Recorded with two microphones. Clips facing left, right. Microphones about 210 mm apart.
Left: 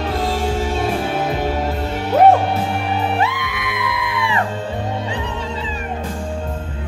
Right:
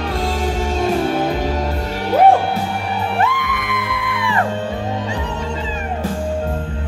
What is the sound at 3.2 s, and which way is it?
Music, 50° right (ahead or behind).